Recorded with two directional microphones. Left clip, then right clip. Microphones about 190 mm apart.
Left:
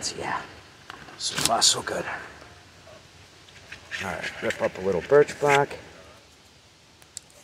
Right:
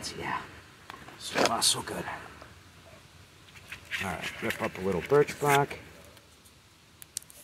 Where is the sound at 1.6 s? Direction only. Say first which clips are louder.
Left 6 dB; 55° right (ahead or behind).